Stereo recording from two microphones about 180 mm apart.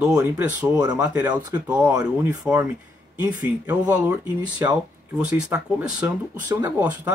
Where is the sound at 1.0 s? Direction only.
10° right (ahead or behind).